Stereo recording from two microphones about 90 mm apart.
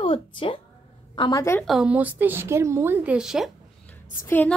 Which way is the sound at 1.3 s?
35° left (ahead or behind).